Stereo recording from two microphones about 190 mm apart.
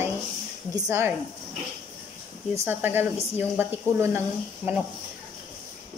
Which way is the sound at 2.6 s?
10° right (ahead or behind).